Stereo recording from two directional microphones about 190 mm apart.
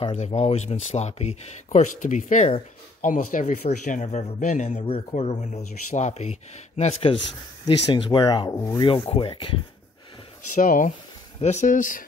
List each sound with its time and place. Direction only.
0.0 s speech: 30° left (ahead or behind)
10.5 s speech: 45° left (ahead or behind)